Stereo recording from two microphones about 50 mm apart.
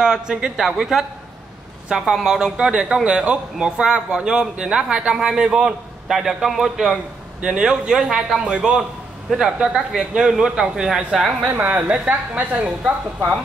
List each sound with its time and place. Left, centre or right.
0.0 s a man's voice: centre
6.1 s a man's voice: centre
7.4 s a man's voice: centre
11.5 s a man's voice: right